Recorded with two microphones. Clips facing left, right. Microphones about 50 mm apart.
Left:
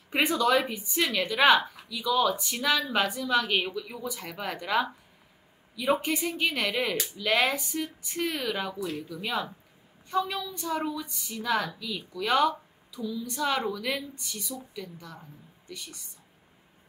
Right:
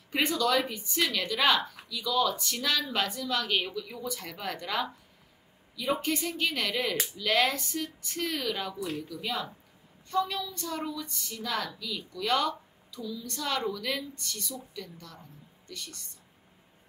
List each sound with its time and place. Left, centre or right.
0.1 s a woman's voice: left